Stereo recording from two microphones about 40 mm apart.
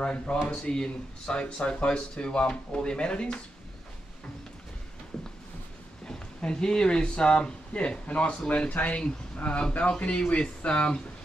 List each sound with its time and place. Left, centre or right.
0.0 s speech: left
5.1 s a sound: centre
6.0 s speech: left
8.5 s speech: left